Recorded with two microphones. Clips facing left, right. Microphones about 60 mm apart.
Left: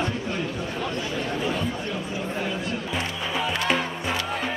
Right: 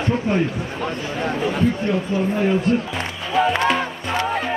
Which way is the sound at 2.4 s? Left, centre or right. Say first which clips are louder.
Right 11 dB; right.